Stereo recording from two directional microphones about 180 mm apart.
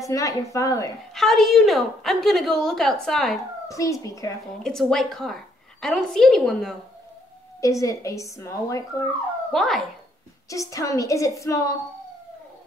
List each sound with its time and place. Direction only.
0.0 s speech: 20° left (ahead or behind)
1.1 s a woman's voice: centre (ahead or behind)
3.6 s speech: 20° left (ahead or behind)
4.6 s a woman's voice: 5° left (ahead or behind)
7.6 s speech: 15° left (ahead or behind)
9.5 s a woman's voice: centre (ahead or behind)
10.5 s speech: 20° left (ahead or behind)